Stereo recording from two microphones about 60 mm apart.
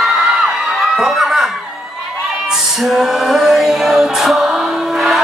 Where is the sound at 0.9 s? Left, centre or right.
Centre.